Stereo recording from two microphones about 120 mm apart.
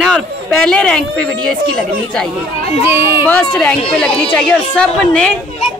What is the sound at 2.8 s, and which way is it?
Speech, 20° right (ahead or behind).